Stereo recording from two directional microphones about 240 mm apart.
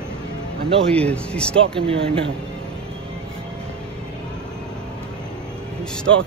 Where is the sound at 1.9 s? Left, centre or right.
Right.